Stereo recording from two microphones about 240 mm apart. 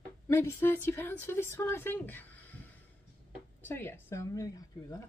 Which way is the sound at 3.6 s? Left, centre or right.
Centre.